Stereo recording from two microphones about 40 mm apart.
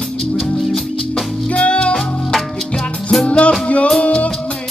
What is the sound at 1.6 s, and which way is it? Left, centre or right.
Music, left.